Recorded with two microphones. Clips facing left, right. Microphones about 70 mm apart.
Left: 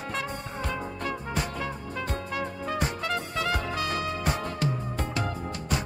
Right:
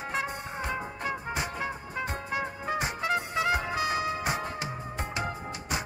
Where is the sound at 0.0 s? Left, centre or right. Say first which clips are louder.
Even; centre.